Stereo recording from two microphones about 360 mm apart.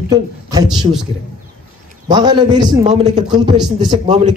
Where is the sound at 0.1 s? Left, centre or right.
Centre.